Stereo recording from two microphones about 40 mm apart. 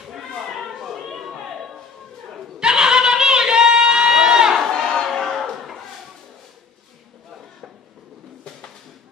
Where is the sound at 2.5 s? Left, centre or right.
Centre.